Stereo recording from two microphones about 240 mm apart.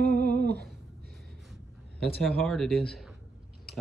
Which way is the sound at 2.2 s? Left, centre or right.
Centre.